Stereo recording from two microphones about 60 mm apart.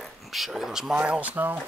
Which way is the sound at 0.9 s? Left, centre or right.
Right.